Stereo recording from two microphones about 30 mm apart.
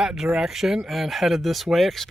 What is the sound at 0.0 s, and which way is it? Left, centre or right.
Speech, centre.